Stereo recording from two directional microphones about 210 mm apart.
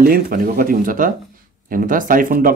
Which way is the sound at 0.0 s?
45° right (ahead or behind).